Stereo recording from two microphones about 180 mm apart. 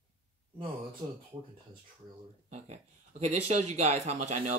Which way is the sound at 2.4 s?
40° right (ahead or behind).